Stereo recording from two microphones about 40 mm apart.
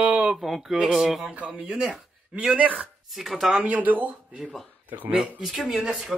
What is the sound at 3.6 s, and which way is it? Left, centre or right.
Speech, right.